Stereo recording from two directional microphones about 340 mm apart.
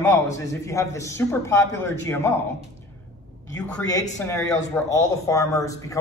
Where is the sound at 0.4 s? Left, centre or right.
Centre.